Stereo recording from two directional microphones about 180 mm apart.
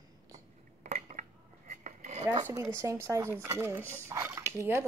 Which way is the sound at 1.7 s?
40° right (ahead or behind).